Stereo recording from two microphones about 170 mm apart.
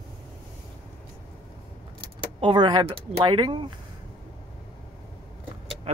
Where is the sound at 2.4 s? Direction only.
30° right (ahead or behind).